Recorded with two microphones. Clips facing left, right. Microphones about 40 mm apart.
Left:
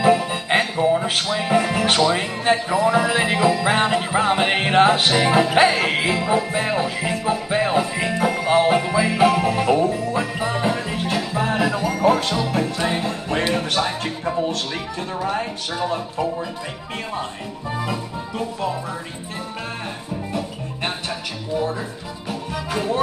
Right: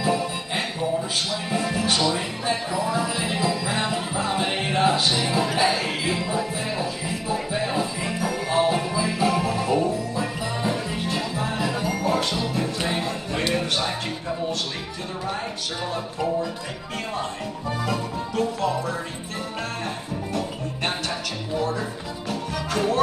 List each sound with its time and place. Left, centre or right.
0.0 s music: left
0.5 s music: left
9.3 s music: left
11.7 s music: centre
12.0 s music: left
13.7 s music: left
17.6 s music: centre
22.3 s music: centre